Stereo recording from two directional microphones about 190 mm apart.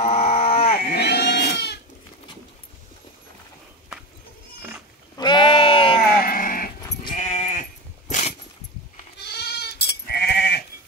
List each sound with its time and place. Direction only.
0.0 s a sound: 35° left (ahead or behind)
0.7 s goat: 55° left (ahead or behind)
5.1 s sheep: 25° left (ahead or behind)
6.2 s sheep: 50° left (ahead or behind)
7.2 s sheep: 35° left (ahead or behind)
8.1 s a sound: 35° left (ahead or behind)
9.2 s goat: 60° left (ahead or behind)